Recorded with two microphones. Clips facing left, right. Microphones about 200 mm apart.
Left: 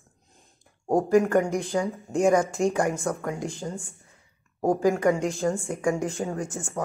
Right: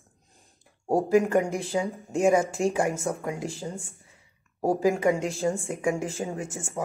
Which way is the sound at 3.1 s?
20° right (ahead or behind).